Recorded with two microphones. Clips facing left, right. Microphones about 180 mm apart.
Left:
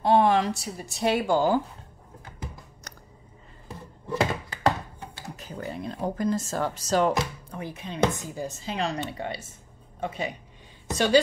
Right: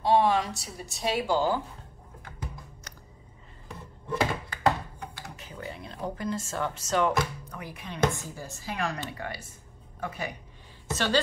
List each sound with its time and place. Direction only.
0.0 s a woman's voice: 55° left (ahead or behind)
5.3 s a woman's voice: 40° left (ahead or behind); by 11.1 s 15° left (ahead or behind)